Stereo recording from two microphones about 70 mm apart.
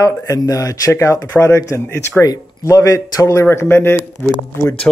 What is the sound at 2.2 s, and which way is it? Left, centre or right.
Speech, left.